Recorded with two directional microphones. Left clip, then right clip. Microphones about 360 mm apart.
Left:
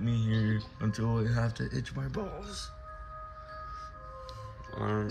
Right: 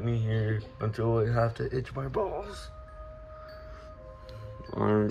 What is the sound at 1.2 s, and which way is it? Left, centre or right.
Speech, centre.